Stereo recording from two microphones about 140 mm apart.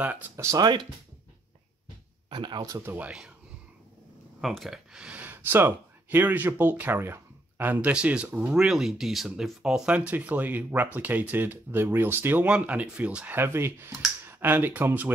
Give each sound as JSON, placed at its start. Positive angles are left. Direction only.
{"t": 0.0, "sound": "speech", "side_deg": -15}
{"t": 2.2, "sound": "speech", "side_deg": -35}
{"t": 4.4, "sound": "speech", "side_deg": 0}